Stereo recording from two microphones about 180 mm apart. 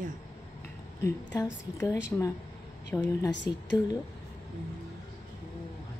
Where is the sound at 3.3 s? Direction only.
80° left.